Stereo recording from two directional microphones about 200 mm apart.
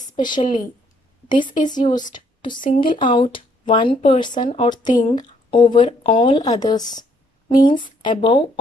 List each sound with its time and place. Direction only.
0.2 s speech: 20° left (ahead or behind)